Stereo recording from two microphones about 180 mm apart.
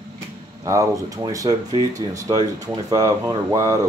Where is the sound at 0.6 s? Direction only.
20° right (ahead or behind).